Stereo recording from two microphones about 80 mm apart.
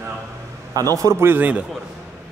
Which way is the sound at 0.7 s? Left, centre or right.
Right.